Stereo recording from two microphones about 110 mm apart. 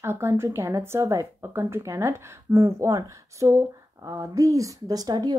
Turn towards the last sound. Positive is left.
turn(degrees=-35)  # may be behind; listen again after turning